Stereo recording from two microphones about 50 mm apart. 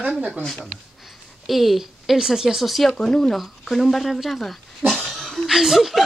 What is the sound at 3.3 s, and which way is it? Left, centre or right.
Speech, centre.